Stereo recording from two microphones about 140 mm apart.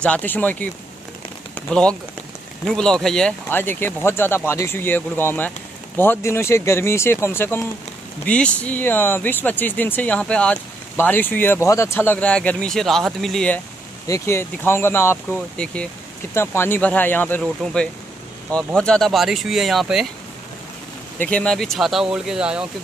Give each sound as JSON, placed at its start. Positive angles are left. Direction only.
{"t": 0.0, "sound": "speech", "side_deg": 10}
{"t": 1.7, "sound": "speech", "side_deg": 5}
{"t": 14.0, "sound": "speech", "side_deg": 20}
{"t": 17.4, "sound": "speech", "side_deg": 0}
{"t": 21.2, "sound": "speech", "side_deg": 10}